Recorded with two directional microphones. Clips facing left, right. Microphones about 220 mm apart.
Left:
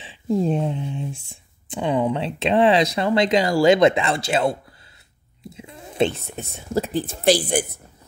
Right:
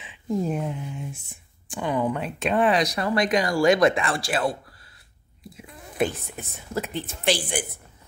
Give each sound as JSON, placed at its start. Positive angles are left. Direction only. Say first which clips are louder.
{"t": 0.0, "sound": "speech", "louder": "left 5 dB", "side_deg": 30}
{"t": 1.1, "sound": "speech", "louder": "left 4 dB", "side_deg": 90}
{"t": 1.7, "sound": "speech", "louder": "left 4 dB", "side_deg": 25}